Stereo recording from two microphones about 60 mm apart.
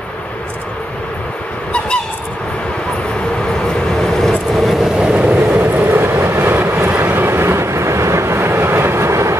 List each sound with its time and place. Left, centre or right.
3.7 s vehicle: centre
4.9 s vehicle: centre
5.6 s vehicle: right
7.2 s train: right